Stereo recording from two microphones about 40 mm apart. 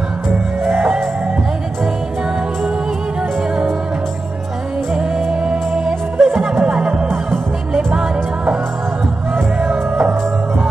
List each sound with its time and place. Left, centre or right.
4.9 s music: right
9.6 s music: right